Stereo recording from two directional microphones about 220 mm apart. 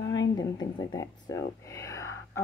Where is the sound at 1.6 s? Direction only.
15° left (ahead or behind).